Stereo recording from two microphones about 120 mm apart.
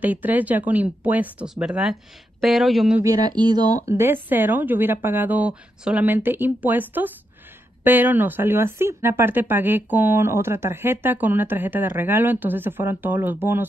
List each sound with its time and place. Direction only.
0.0 s speech: 15° right (ahead or behind)
3.0 s speech: 30° right (ahead or behind); by 13.7 s 15° right (ahead or behind)